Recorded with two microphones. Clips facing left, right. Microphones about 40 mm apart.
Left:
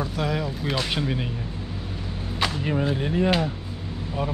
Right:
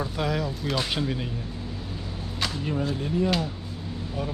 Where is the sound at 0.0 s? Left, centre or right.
Centre.